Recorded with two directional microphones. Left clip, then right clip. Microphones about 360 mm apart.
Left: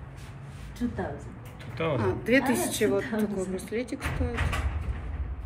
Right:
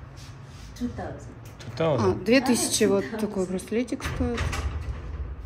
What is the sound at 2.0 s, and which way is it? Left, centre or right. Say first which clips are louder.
A woman's voice: right 1 dB; right.